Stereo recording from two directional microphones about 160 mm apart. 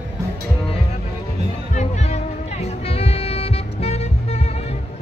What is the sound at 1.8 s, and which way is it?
Music, 45° left (ahead or behind).